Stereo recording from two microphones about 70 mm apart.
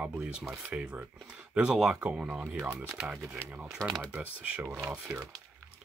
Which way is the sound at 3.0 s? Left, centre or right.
Centre.